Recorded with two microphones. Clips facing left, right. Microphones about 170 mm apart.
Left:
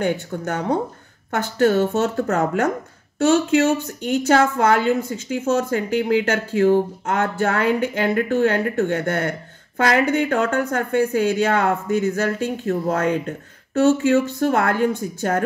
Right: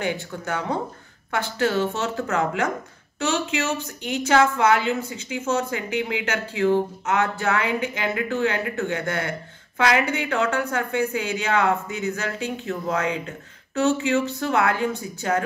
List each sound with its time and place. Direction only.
0.0 s speech: 45° left (ahead or behind)